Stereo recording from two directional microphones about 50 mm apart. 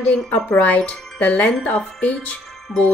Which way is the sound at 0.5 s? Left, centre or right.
Left.